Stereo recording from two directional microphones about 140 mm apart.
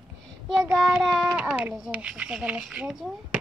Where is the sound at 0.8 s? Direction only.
5° right (ahead or behind).